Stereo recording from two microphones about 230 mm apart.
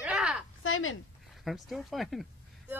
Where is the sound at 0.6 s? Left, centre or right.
Left.